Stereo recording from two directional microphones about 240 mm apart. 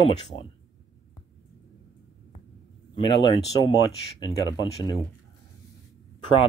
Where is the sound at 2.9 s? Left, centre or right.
Centre.